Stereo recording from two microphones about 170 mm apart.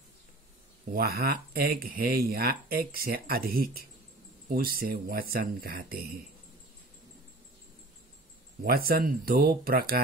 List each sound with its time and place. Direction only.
0.9 s speech: 60° right (ahead or behind)
8.6 s speech: 60° right (ahead or behind)